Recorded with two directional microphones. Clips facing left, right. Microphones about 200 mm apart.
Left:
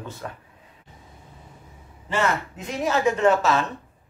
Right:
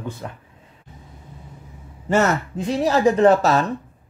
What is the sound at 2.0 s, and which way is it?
A man's voice, 45° right (ahead or behind).